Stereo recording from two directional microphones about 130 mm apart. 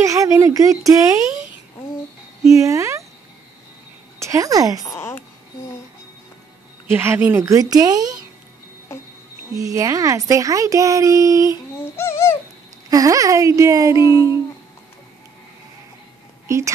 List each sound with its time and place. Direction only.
0.0 s speech: 25° right (ahead or behind)
2.4 s speech: 25° right (ahead or behind)
4.2 s a woman's voice: 25° right (ahead or behind)
4.8 s a woman's voice: 20° left (ahead or behind)
6.9 s speech: 15° right (ahead or behind)
9.6 s speech: 25° right (ahead or behind)
12.0 s bird: 20° left (ahead or behind)
12.9 s speech: 25° right (ahead or behind)
14.0 s humming: 35° left (ahead or behind)
16.4 s speech: 25° right (ahead or behind)